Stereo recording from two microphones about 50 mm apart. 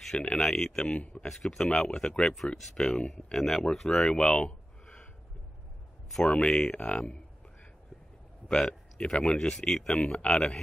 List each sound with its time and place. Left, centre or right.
0.4 s speech: centre
2.3 s speech: centre
2.8 s speech: centre
4.0 s a sound: centre
6.2 s speech: centre
8.5 s speech: centre
9.9 s speech: left